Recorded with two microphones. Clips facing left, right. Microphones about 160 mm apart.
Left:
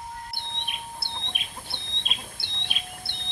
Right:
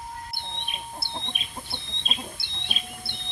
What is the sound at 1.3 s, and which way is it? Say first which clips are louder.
Chicken: right 2 dB; 75° left (ahead or behind).